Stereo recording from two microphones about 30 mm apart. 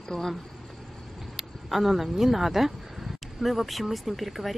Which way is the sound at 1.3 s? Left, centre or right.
Centre.